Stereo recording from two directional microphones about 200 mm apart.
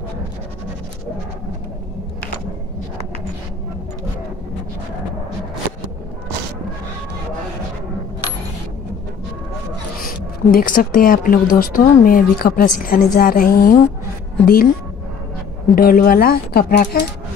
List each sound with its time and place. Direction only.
10.0 s a woman's voice: 45° left (ahead or behind)
15.7 s a woman's voice: 45° left (ahead or behind)